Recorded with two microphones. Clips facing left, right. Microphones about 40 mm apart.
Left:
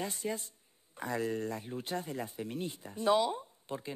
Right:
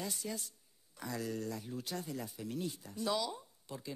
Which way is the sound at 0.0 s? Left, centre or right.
Left.